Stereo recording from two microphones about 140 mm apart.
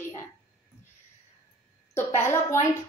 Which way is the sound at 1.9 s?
15° left (ahead or behind).